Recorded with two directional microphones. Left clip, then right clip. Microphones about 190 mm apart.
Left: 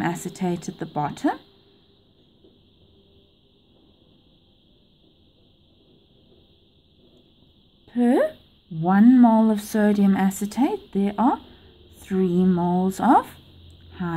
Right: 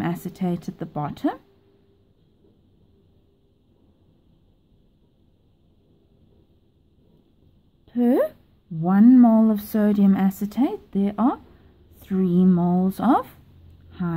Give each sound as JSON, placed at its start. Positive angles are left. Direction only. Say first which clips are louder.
{"t": 0.0, "sound": "a woman's voice", "louder": "left 2 dB", "side_deg": -20}
{"t": 7.8, "sound": "a woman's voice", "louder": "even", "side_deg": -15}